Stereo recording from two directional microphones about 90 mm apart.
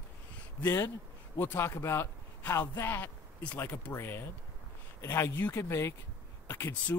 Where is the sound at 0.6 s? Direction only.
30° left (ahead or behind).